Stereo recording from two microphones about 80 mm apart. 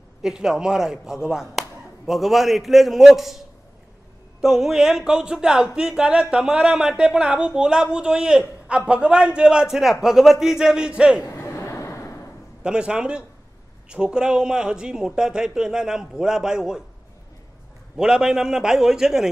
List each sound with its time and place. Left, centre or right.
0.2 s speech: centre
11.2 s a sound: left
12.6 s speech: centre
17.9 s speech: centre